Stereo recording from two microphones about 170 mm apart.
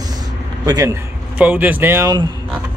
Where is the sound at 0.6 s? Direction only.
20° right (ahead or behind).